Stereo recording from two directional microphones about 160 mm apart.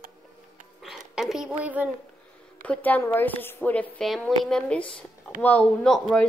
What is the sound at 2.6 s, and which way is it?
A woman's voice, 10° left (ahead or behind).